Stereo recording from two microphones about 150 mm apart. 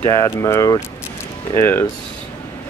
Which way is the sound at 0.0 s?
20° left (ahead or behind).